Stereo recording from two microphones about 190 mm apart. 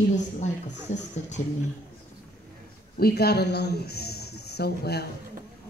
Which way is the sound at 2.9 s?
55° left (ahead or behind).